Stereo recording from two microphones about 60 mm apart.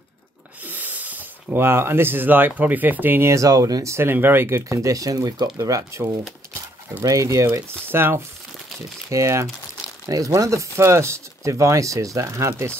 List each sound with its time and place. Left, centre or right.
0.7 s a sound: right
1.6 s speech: right
3.3 s speech: right
3.9 s speech: right
4.6 s speech: right
7.0 s speech: right
7.9 s speech: right
9.1 s speech: right
10.0 s speech: right